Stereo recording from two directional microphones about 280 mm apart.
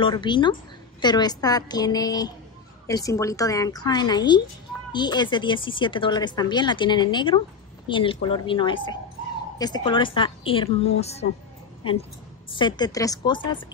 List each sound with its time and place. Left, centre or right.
0.0 s a woman's voice: centre